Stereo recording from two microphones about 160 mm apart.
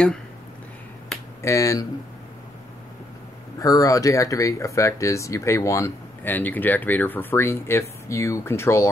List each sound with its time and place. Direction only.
1.4 s speech: 20° left (ahead or behind)
3.5 s speech: 20° left (ahead or behind)